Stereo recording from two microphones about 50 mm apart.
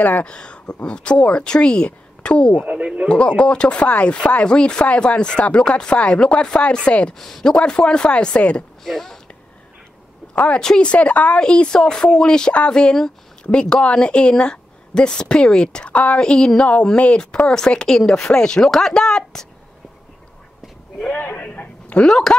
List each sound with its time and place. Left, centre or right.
0.2 s chopping: centre
2.7 s speech: right
3.1 s chopping: centre
7.2 s speech: centre
7.5 s chopping: centre
8.8 s speech: centre
10.3 s a woman's voice: left
16.2 s a woman's voice: centre
16.8 s chopping: left
17.5 s a woman's voice: centre
21.2 s a woman's voice: left
22.0 s a woman's voice: centre